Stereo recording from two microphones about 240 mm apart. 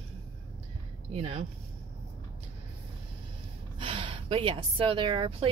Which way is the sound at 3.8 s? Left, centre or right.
Centre.